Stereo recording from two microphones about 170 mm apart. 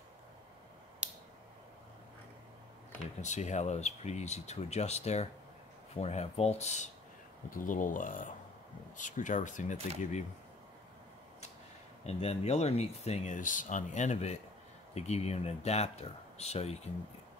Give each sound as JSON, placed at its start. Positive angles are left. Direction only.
{"t": 1.0, "sound": "a sound", "side_deg": -5}
{"t": 3.2, "sound": "speech", "side_deg": 45}
{"t": 7.4, "sound": "speech", "side_deg": 50}
{"t": 12.0, "sound": "speech", "side_deg": 35}